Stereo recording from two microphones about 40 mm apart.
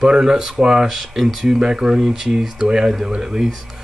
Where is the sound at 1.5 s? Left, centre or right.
Right.